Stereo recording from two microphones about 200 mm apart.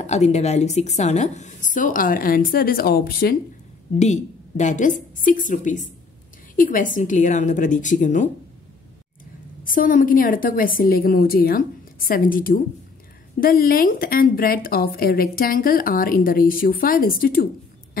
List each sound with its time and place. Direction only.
0.0 s a woman's voice: 35° left (ahead or behind); by 3.3 s 50° left (ahead or behind)
4.0 s a woman's voice: 35° left (ahead or behind)
9.7 s speech: 40° left (ahead or behind)